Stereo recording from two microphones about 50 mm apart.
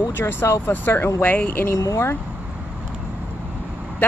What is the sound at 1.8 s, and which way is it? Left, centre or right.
Speech, left.